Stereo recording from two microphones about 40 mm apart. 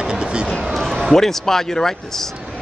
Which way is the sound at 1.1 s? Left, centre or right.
Centre.